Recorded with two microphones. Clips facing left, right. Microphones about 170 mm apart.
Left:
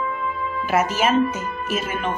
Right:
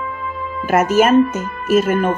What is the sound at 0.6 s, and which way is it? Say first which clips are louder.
A woman's voice: right 7 dB; 50° right (ahead or behind).